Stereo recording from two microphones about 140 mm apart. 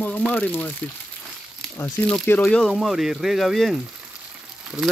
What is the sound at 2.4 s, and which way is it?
Speech, centre (ahead or behind).